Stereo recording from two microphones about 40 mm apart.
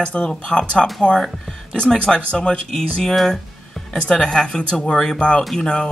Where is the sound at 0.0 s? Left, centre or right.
Left.